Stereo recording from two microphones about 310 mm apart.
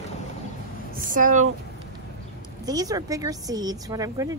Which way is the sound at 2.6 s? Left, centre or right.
Centre.